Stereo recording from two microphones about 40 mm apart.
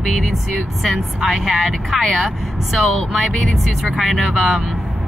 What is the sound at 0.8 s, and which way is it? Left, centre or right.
Speech, centre.